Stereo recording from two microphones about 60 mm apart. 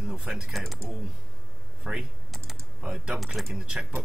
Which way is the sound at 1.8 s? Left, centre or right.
Centre.